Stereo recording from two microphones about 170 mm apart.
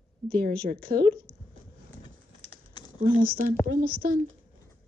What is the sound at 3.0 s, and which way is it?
Speech, 55° right (ahead or behind).